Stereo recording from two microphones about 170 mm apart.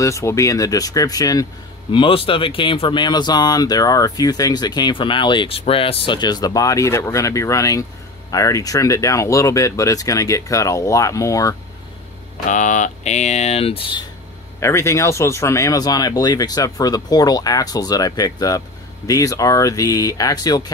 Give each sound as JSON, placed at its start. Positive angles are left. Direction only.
{"t": 0.0, "sound": "speech", "side_deg": 15}
{"t": 12.4, "sound": "speech", "side_deg": 45}
{"t": 14.6, "sound": "speech", "side_deg": 15}